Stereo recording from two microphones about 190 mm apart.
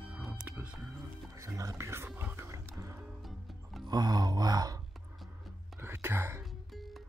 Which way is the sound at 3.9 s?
20° right (ahead or behind).